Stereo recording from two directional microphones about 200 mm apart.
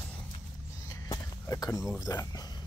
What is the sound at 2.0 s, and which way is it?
Speech, 15° left (ahead or behind).